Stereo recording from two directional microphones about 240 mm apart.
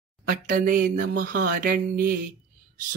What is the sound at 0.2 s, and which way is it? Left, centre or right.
Speech, right.